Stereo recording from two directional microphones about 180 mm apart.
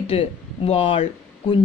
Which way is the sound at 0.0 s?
35° left (ahead or behind).